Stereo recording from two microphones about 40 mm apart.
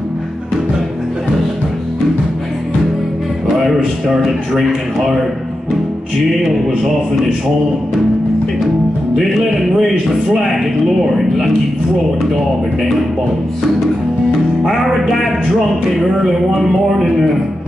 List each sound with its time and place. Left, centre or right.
4.3 s a man's voice: centre
9.2 s a man's voice: centre
11.1 s a man's voice: centre
14.7 s a man's voice: centre